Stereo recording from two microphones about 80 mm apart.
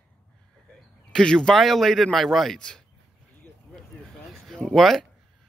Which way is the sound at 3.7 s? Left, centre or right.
Centre.